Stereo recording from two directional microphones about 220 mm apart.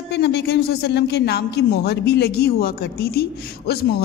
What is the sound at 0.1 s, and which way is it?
Speech, 50° left (ahead or behind).